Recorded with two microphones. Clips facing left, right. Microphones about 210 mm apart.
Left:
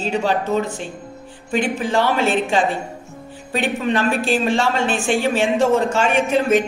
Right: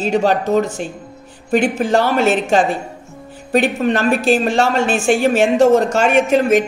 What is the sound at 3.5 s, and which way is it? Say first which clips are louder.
Speech: right 5 dB; 45° right (ahead or behind).